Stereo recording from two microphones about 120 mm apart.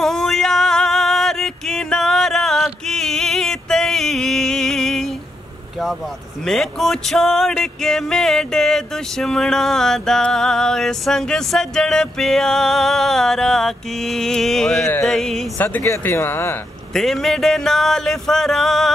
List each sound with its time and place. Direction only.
0.0 s a sound: 5° left (ahead or behind)
6.4 s music: 5° left (ahead or behind)
15.5 s speech: 15° left (ahead or behind)
16.9 s music: centre (ahead or behind)